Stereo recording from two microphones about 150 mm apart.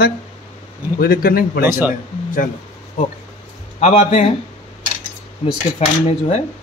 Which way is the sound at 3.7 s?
45° left (ahead or behind).